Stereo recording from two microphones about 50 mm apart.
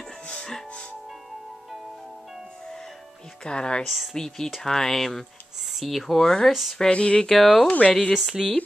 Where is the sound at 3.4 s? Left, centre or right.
Centre.